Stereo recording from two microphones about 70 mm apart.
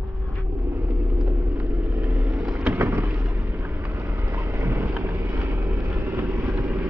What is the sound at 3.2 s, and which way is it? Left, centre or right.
Boat, right.